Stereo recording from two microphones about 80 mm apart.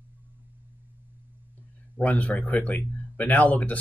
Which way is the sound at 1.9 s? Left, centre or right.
Centre.